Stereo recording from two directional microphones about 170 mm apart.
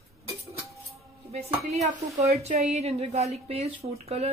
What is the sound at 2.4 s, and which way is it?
Speech, 40° right (ahead or behind).